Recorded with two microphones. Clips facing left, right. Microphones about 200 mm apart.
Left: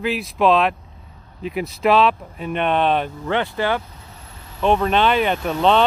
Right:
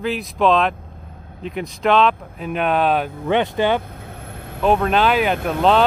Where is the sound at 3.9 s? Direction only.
55° right (ahead or behind).